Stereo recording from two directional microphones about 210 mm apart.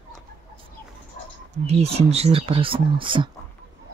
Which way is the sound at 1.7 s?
30° right (ahead or behind).